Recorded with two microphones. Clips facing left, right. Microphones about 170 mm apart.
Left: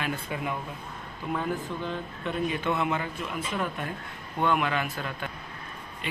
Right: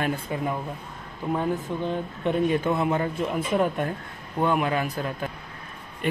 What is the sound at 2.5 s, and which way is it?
Speech, 35° right (ahead or behind).